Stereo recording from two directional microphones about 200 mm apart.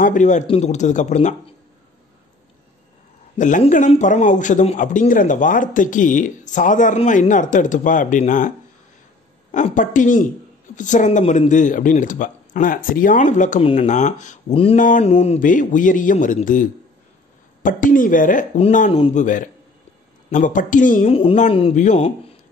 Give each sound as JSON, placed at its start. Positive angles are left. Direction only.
{"t": 0.0, "sound": "a man's voice", "side_deg": 40}
{"t": 3.3, "sound": "a man's voice", "side_deg": 40}
{"t": 17.6, "sound": "a man's voice", "side_deg": 40}
{"t": 21.1, "sound": "speech", "side_deg": 30}